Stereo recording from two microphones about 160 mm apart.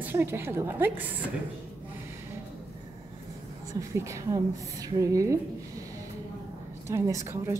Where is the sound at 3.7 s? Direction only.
20° right (ahead or behind).